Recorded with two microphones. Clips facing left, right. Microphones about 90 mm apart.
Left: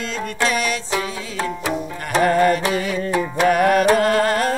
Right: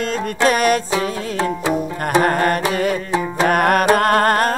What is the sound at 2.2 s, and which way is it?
Music, 50° right (ahead or behind).